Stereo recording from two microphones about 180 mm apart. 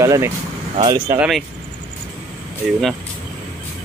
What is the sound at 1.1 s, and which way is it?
Speech, 5° right (ahead or behind).